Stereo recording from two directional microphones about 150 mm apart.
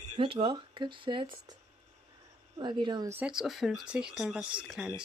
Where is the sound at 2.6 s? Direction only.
30° right (ahead or behind).